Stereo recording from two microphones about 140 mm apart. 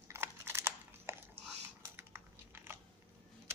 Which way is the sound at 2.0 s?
15° right (ahead or behind).